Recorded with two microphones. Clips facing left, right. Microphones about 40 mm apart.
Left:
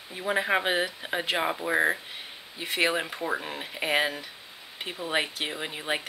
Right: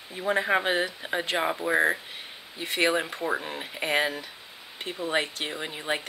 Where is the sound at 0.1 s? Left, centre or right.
Centre.